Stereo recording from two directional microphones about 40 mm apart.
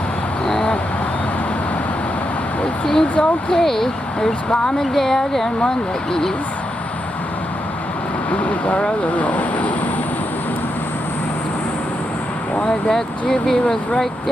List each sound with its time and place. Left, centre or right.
2.9 s speech: centre
8.3 s speech: left
12.6 s speech: centre